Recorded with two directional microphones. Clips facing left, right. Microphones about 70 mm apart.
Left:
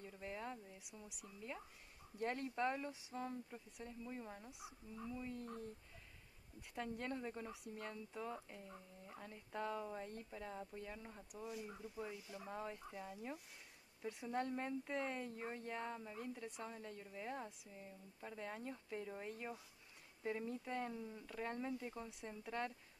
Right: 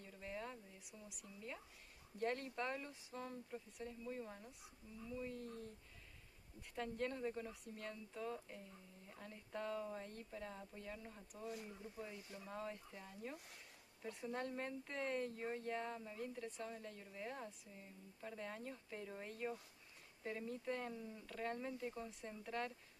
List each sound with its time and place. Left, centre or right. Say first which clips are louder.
0.0 s a sound: left 1 dB; centre
2.1 s speech: left 1 dB; centre
6.7 s speech: right 1 dB; centre